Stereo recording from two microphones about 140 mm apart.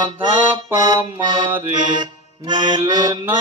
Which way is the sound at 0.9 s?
35° right (ahead or behind).